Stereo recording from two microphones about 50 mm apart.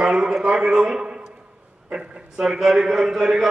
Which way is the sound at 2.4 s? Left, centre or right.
Centre.